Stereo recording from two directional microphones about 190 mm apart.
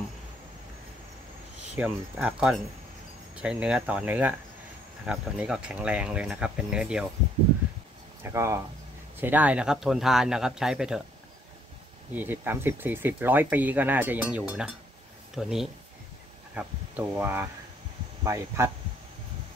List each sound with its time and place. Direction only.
1.8 s speech: 5° right (ahead or behind)
8.2 s speech: 15° right (ahead or behind)
12.1 s speech: 10° right (ahead or behind)